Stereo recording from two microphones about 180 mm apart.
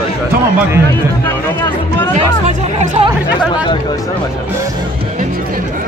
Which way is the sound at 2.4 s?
40° right (ahead or behind).